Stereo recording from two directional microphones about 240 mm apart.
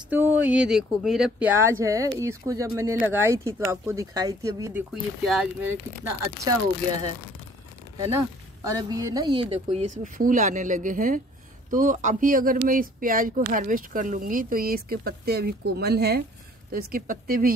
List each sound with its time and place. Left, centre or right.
0.1 s speech: centre
5.2 s speech: centre
6.4 s speech: centre
8.6 s speech: centre; by 17.6 s right